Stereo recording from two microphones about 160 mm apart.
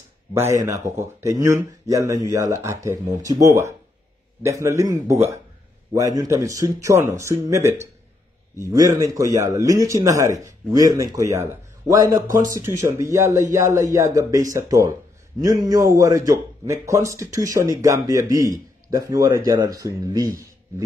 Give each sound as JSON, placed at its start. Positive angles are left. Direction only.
{"t": 0.3, "sound": "a man's voice", "side_deg": -15}